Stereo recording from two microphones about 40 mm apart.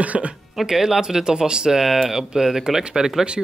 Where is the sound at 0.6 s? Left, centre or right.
Centre.